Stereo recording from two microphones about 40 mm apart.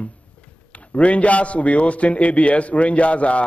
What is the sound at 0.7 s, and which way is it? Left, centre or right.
A man's voice, left.